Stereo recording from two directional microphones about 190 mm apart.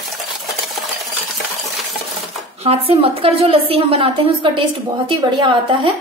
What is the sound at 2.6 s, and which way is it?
A woman's voice, 30° right (ahead or behind).